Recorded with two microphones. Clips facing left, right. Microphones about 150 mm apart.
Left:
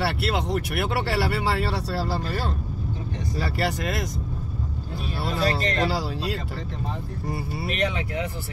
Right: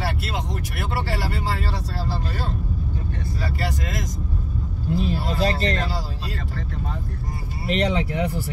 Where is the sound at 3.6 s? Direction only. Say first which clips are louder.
Left 4 dB; 65° left (ahead or behind).